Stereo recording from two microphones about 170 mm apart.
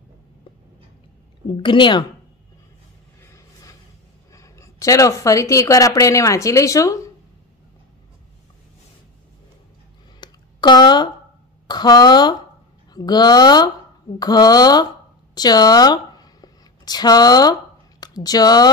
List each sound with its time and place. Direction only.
1.5 s speech: 30° left (ahead or behind)
3.2 s vehicle: 15° left (ahead or behind)
4.3 s speech: 20° left (ahead or behind)
10.2 s a sound: 25° left (ahead or behind)
11.6 s speech: 25° left (ahead or behind)